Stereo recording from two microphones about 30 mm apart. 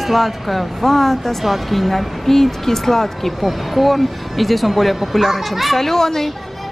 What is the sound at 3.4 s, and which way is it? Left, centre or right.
A woman's voice, centre.